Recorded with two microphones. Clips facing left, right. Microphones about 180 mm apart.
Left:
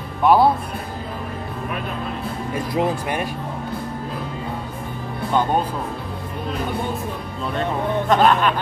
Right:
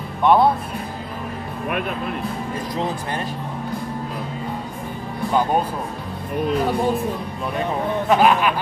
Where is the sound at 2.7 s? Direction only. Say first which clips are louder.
Left 5 dB; 10° left (ahead or behind).